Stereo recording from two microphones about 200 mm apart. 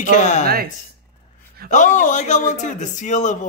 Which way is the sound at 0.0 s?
35° left (ahead or behind).